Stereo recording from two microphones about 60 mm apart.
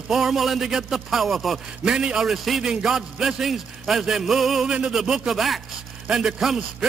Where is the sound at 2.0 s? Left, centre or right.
Centre.